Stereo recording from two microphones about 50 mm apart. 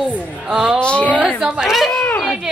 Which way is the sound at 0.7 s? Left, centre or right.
Left.